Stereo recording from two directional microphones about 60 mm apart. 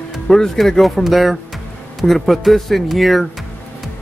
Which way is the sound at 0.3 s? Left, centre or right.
Centre.